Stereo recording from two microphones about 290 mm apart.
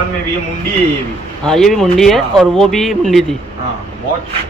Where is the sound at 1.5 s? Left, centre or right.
Centre.